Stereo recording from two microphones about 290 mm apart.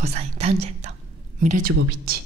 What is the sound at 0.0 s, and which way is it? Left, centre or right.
A woman's voice, right.